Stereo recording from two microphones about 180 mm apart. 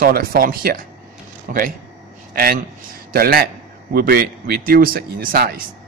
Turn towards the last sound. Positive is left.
turn(degrees=-55)  # may be behind; listen again after turning